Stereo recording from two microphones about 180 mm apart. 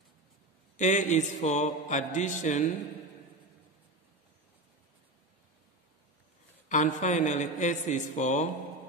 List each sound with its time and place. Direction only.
0.7 s mantra: 45° left (ahead or behind)
6.7 s mantra: 45° left (ahead or behind)